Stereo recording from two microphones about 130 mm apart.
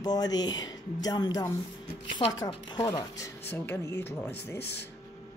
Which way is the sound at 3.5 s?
15° left (ahead or behind).